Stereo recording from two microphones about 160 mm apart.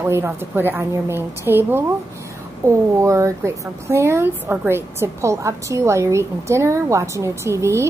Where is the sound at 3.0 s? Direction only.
20° right (ahead or behind).